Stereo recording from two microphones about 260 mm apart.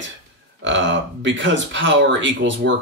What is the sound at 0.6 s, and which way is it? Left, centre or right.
Speech, right.